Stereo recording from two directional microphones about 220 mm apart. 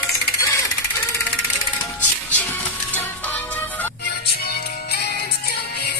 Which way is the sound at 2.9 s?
5° left (ahead or behind).